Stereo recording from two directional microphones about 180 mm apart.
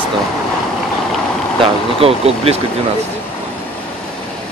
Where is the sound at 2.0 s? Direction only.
35° right (ahead or behind).